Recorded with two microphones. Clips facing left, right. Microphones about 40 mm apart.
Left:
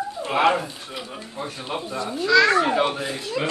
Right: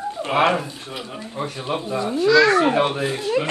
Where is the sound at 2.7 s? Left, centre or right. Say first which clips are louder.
Right 2 dB; right.